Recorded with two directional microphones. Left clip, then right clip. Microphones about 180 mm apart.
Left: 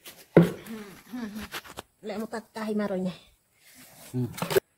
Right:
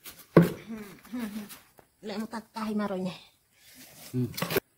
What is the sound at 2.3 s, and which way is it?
Speech, 5° left (ahead or behind).